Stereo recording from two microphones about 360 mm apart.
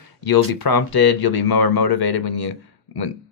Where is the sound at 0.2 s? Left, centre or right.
Left.